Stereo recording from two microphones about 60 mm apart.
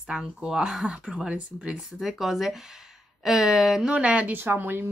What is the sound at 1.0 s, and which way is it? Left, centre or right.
Speech, right.